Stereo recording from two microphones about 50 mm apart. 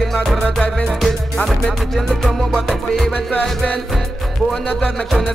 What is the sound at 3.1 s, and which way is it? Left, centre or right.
Music, left.